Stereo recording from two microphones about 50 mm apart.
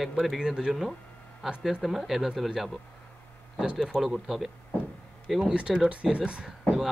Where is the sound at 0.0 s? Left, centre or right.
Centre.